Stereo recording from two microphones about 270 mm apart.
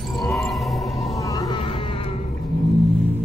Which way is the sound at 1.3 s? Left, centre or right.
Centre.